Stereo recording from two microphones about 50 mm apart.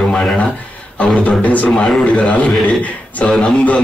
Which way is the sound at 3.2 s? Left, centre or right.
Centre.